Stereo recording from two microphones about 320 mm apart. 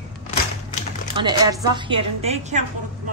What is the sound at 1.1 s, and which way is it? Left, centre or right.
A woman's voice, centre.